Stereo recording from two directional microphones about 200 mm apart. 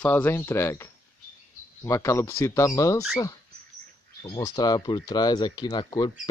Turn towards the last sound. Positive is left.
turn(degrees=20)  # may be behind; listen again after turning